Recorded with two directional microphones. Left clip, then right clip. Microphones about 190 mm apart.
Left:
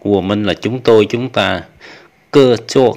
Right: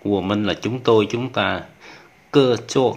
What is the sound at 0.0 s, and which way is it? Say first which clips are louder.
Speech: left 6 dB; 25° left (ahead or behind).